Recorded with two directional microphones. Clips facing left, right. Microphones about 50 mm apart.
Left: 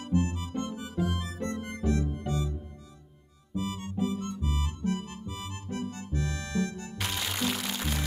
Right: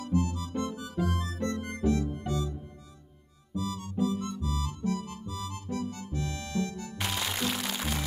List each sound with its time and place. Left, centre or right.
0.0 s music: left
0.5 s music: centre
1.9 s music: left
3.5 s music: left
7.0 s music: centre